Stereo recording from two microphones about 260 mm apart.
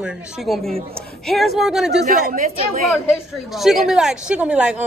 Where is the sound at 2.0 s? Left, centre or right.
Right.